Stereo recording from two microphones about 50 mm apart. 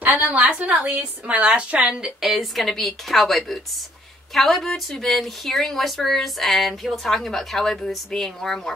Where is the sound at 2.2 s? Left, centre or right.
Centre.